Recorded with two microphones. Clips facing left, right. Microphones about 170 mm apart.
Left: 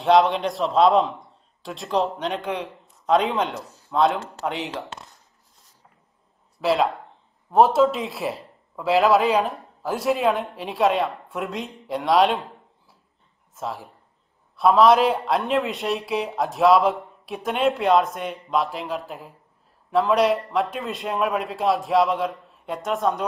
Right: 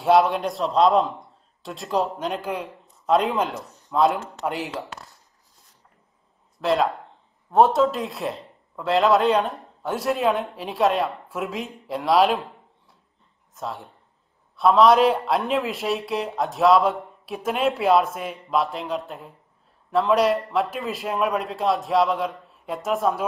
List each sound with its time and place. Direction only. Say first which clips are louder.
0.0 s a man's voice: left 1 dB; centre (ahead or behind)
4.8 s speech: left 1 dB; 20° left (ahead or behind)
6.6 s a man's voice: even; centre (ahead or behind)
13.6 s a man's voice: left 1 dB; centre (ahead or behind)